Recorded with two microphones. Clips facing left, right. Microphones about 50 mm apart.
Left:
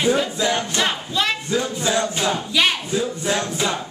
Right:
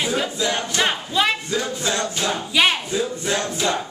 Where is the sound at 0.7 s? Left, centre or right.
Centre.